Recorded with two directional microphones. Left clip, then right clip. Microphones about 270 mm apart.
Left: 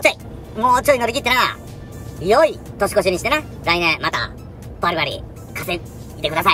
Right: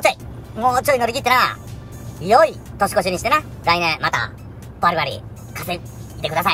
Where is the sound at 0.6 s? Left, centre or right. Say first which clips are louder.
Left 2 dB; centre.